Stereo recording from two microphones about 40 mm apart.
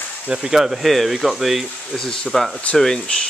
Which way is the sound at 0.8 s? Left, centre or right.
Centre.